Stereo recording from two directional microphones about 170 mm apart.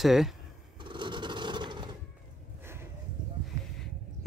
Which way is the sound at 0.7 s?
30° right (ahead or behind).